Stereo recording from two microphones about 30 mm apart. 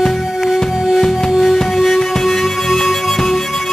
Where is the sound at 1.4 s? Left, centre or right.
Centre.